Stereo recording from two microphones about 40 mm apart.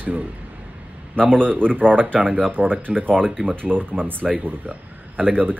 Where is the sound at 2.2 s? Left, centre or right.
Centre.